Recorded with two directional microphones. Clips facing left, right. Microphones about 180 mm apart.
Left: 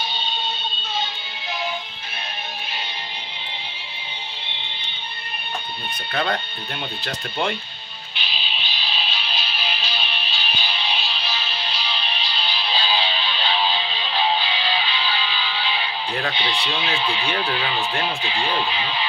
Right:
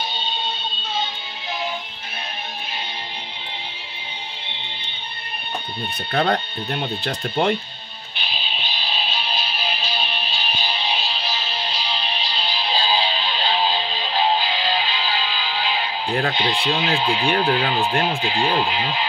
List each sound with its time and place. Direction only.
6.1 s speech: 35° right (ahead or behind)
8.2 s music: 50° right (ahead or behind)
16.1 s speech: 45° right (ahead or behind)